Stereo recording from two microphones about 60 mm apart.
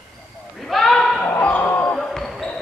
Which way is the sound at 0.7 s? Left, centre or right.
Centre.